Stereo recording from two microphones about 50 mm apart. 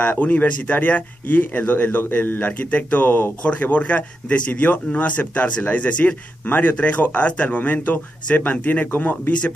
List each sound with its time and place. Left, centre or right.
0.2 s speech: left